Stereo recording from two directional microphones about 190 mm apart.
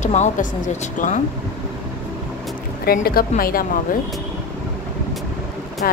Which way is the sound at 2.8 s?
50° left (ahead or behind).